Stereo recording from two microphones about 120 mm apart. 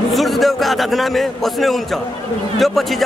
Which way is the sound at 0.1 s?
Centre (ahead or behind).